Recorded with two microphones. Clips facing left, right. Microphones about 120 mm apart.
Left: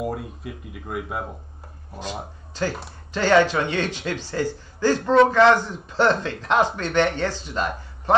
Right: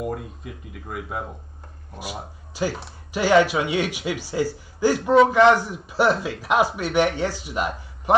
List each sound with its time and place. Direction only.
0.0 s speech: centre (ahead or behind)
2.5 s a man's voice: 10° right (ahead or behind)